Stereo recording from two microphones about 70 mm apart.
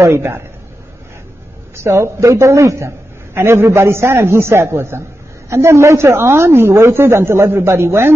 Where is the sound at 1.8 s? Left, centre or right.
Right.